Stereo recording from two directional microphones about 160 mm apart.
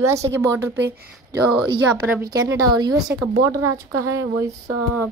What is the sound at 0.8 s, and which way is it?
Speech, 90° right.